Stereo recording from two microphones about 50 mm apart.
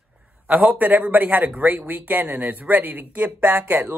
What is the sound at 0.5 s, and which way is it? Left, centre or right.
Speech, right.